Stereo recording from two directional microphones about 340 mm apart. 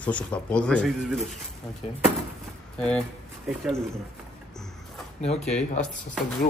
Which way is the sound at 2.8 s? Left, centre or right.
Centre.